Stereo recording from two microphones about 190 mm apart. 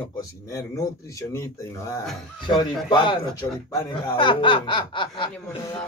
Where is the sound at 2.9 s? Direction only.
25° left (ahead or behind).